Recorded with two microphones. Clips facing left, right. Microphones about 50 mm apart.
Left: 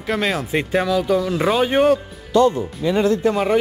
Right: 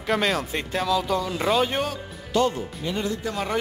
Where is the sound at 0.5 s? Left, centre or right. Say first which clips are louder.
Left 5 dB; centre.